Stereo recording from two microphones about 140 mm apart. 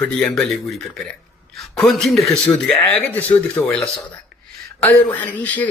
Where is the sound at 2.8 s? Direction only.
10° left (ahead or behind).